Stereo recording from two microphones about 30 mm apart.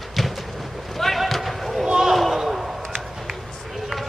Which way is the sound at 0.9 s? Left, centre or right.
Centre.